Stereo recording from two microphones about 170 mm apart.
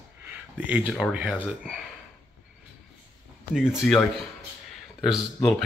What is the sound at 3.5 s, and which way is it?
Speech, 5° right (ahead or behind).